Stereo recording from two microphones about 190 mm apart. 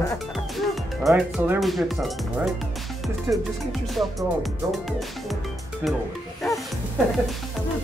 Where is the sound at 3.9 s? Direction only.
Centre (ahead or behind).